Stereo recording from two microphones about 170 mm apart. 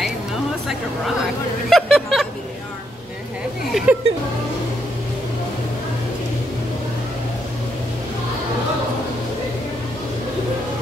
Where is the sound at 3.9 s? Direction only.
10° right (ahead or behind).